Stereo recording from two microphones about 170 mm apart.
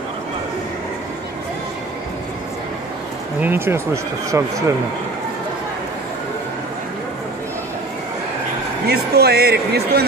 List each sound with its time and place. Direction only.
3.3 s speech: 10° right (ahead or behind)
8.8 s speech: 70° right (ahead or behind)